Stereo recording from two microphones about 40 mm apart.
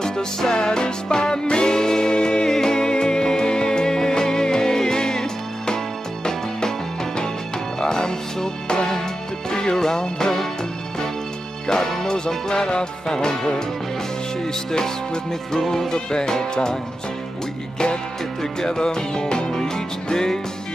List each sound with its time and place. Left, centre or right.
0.0 s music: centre
7.8 s music: centre
11.6 s music: centre
15.5 s speech: centre
18.4 s music: centre